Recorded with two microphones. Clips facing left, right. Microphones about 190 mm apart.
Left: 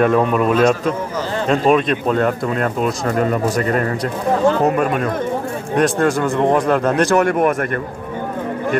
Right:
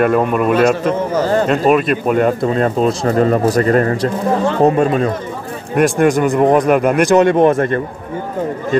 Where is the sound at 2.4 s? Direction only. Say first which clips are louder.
Right 5 dB; 25° right (ahead or behind).